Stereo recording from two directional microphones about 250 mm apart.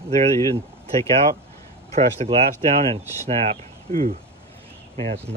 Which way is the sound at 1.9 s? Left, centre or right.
Right.